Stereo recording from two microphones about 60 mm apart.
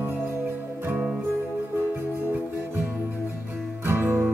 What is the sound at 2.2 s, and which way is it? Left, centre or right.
Music, right.